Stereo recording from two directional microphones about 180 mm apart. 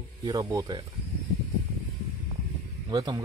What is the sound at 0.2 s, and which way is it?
Speech, 20° right (ahead or behind).